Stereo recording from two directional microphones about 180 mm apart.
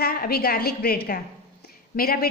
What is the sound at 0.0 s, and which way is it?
A woman's voice, 55° left (ahead or behind).